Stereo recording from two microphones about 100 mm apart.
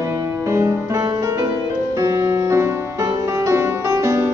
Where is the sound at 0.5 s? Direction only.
30° right (ahead or behind).